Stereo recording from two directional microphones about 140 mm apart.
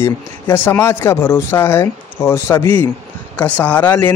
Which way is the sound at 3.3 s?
10° left (ahead or behind).